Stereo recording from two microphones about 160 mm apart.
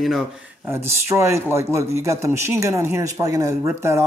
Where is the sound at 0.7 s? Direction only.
15° right (ahead or behind).